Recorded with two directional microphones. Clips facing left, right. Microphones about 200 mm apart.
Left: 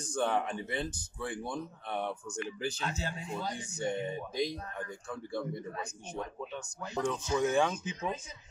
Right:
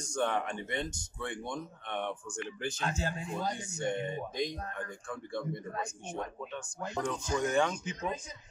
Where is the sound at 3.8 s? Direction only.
5° left (ahead or behind).